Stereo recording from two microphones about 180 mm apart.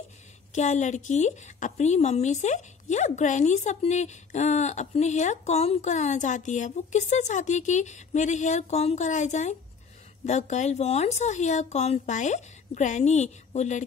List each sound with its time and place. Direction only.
0.5 s a woman's voice: 40° left (ahead or behind)